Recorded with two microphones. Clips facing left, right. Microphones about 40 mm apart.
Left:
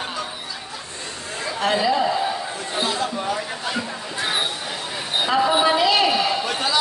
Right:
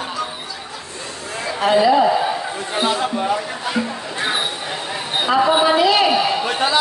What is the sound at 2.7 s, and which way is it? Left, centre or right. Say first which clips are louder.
Music: right 4 dB; right.